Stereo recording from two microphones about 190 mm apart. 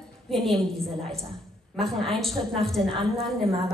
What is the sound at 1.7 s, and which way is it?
Speech, centre (ahead or behind).